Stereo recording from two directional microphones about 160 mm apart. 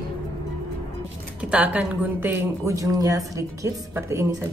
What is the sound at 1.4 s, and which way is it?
A woman's voice, 5° right (ahead or behind).